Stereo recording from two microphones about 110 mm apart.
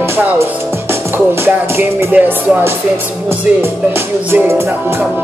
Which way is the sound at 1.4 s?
20° right (ahead or behind).